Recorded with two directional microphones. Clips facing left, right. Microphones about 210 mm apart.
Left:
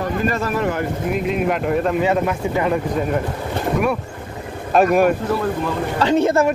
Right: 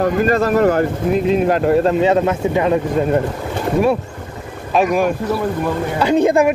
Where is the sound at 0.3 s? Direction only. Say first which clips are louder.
Right 7 dB; 40° right (ahead or behind); by 2.8 s 20° right (ahead or behind).